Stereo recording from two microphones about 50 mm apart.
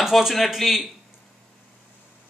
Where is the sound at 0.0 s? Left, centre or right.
Centre.